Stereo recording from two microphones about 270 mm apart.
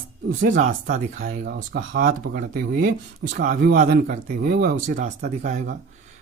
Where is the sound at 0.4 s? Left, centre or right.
Right.